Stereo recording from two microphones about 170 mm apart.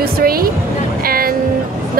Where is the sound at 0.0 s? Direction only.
60° right (ahead or behind).